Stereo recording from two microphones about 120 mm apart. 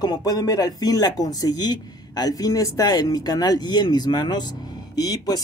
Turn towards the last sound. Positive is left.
turn(degrees=30)  # may be behind; listen again after turning